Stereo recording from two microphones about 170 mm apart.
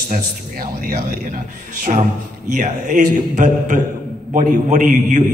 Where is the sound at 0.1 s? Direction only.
55° right (ahead or behind).